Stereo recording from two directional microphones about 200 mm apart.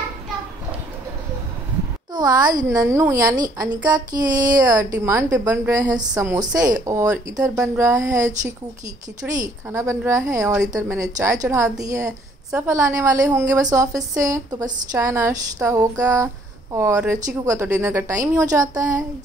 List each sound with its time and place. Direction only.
2.1 s a woman's voice: 20° right (ahead or behind)